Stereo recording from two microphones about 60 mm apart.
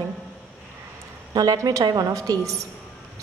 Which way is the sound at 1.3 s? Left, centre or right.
Right.